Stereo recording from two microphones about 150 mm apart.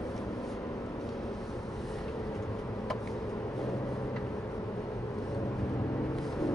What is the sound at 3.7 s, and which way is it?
Vehicle, 20° left (ahead or behind).